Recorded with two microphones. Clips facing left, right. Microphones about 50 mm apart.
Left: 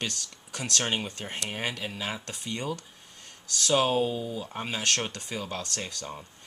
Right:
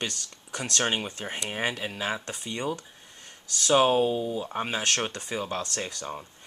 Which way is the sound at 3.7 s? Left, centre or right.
Right.